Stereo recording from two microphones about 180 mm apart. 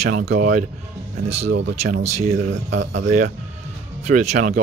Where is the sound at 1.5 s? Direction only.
90° right.